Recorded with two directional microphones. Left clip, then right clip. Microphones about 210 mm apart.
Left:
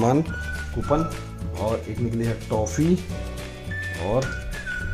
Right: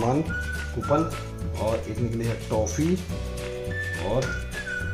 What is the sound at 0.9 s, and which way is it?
Speech, 45° left (ahead or behind).